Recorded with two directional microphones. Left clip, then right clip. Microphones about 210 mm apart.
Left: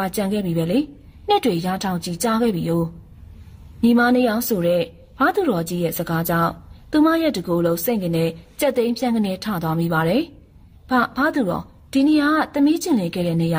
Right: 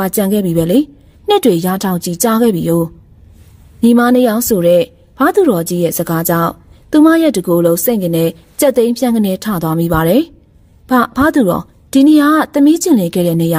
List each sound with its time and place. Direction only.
0.0 s a woman's voice: 55° right (ahead or behind)